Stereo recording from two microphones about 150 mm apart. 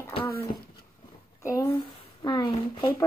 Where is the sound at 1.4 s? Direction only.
20° left (ahead or behind).